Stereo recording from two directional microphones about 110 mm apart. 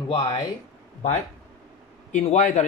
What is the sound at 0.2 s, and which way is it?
Speech, 35° left (ahead or behind).